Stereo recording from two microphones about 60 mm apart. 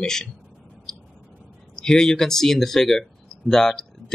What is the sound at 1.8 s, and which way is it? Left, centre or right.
Speech, centre.